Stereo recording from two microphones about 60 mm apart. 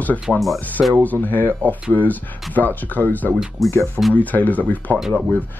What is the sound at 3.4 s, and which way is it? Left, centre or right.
Speech, centre.